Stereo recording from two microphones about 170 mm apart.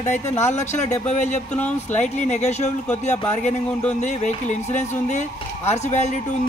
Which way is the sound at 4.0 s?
45° left (ahead or behind).